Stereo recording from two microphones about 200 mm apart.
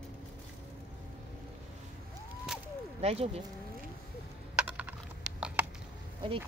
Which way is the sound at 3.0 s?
30° right (ahead or behind).